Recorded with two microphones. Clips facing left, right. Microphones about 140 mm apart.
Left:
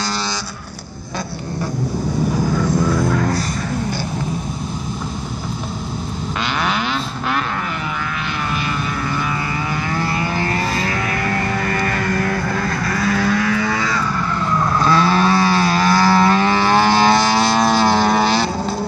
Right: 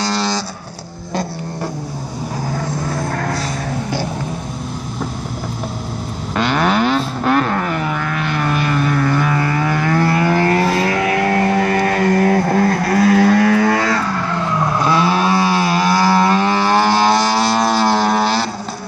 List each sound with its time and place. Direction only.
2.5 s vehicle: 50° right (ahead or behind)
6.3 s vehicle: 45° right (ahead or behind)
8.5 s vehicle: 50° right (ahead or behind)
14.7 s vehicle: 15° right (ahead or behind)